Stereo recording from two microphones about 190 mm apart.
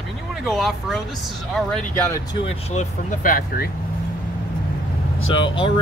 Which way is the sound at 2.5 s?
35° left (ahead or behind).